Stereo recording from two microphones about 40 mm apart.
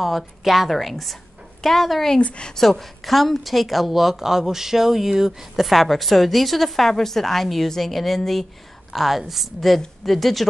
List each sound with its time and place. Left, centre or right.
0.0 s a woman's voice: centre
2.1 s a woman's voice: left
2.5 s a woman's voice: centre